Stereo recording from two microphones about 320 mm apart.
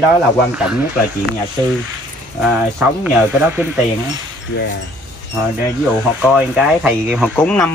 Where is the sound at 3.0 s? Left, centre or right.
Centre.